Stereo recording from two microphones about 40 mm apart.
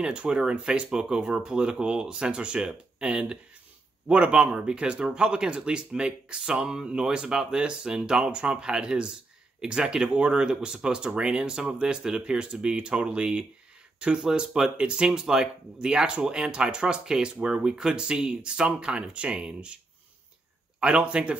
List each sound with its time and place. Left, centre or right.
0.0 s speech: right
20.8 s speech: right